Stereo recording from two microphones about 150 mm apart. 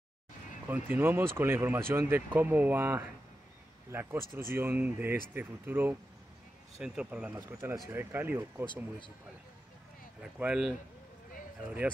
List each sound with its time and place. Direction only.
0.7 s speech: 15° right (ahead or behind)
10.2 s speech: 5° right (ahead or behind)
11.6 s speech: 10° right (ahead or behind)